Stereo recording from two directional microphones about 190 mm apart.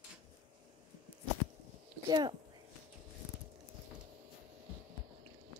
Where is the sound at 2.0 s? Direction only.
20° right (ahead or behind).